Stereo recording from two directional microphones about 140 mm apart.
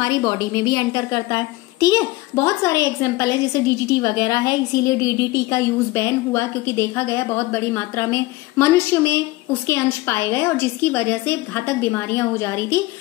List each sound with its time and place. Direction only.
0.0 s a woman's voice: 25° left (ahead or behind)